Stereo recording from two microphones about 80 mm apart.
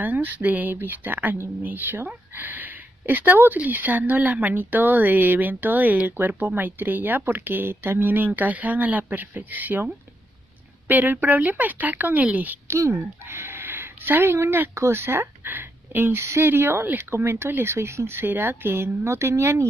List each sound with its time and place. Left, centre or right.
0.0 s speech: right
10.9 s speech: right
12.7 s speech: right